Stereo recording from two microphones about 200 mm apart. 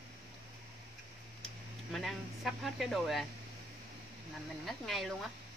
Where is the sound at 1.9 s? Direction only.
Centre (ahead or behind).